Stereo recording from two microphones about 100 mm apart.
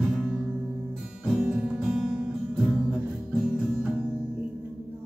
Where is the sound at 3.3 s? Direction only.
5° right (ahead or behind).